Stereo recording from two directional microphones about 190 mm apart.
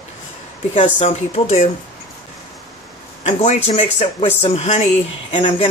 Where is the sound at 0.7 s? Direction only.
35° left (ahead or behind).